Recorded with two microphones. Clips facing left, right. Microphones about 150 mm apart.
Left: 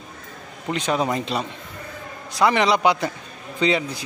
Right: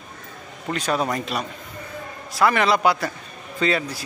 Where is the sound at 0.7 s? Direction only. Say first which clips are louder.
Left 1 dB; 20° left (ahead or behind).